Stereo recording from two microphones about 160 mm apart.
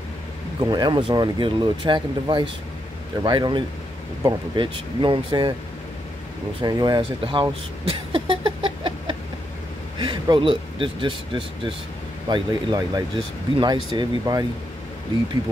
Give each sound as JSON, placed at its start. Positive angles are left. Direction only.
{"t": 0.6, "sound": "speech", "side_deg": -25}
{"t": 6.6, "sound": "speech", "side_deg": -25}
{"t": 8.1, "sound": "a sound", "side_deg": -30}
{"t": 9.9, "sound": "speech", "side_deg": -30}